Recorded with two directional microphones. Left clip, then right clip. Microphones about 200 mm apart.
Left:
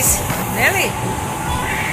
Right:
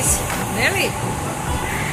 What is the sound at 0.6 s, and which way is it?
Speech, centre (ahead or behind).